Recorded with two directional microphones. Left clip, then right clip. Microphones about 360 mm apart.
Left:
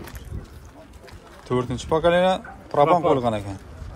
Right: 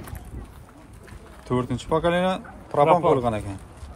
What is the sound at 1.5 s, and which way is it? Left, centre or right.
Speech, centre.